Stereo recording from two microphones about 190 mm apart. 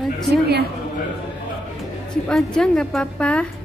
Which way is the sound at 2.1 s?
5° left (ahead or behind).